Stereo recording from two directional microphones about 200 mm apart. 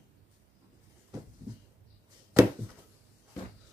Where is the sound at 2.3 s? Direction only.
15° right (ahead or behind).